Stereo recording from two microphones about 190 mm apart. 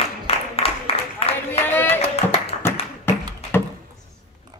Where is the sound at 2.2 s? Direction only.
35° left (ahead or behind).